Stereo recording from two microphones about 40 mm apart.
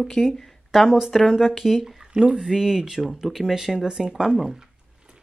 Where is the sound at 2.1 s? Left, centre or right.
Right.